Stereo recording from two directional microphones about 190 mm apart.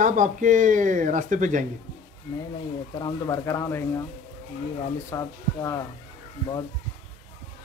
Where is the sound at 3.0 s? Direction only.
15° left (ahead or behind).